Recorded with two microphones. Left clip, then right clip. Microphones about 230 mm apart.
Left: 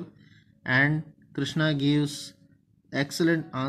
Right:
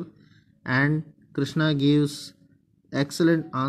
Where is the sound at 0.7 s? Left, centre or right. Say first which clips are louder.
Left 1 dB; centre.